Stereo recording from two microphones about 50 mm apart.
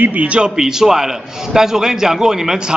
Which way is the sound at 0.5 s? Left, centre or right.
Centre.